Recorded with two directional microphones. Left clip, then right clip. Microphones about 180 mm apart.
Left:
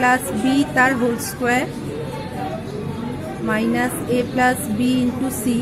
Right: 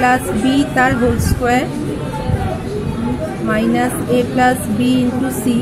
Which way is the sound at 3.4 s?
5° left (ahead or behind).